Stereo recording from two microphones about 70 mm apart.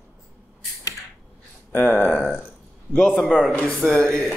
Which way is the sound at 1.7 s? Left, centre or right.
Left.